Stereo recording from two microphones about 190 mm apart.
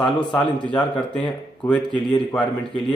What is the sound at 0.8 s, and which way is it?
Speech, 5° left (ahead or behind).